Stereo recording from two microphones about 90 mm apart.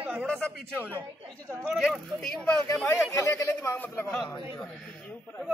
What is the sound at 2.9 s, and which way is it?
Speech, 35° left (ahead or behind).